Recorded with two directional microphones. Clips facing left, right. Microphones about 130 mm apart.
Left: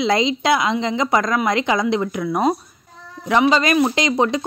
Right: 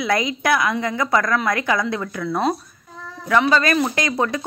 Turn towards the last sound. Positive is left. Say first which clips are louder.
# left 3 dB
turn(degrees=20)  # may be behind; listen again after turning